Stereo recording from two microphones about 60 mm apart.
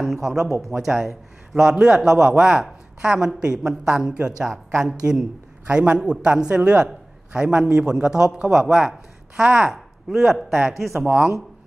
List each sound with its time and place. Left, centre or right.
0.0 s a man's voice: centre
11.1 s speech: centre